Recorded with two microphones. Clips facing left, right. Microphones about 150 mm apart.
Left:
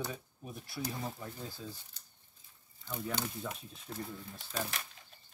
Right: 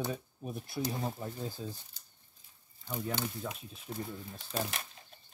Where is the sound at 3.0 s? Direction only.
10° right (ahead or behind).